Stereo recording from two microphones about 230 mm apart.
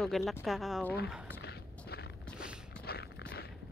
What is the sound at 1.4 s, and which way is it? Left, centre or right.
Walk, left.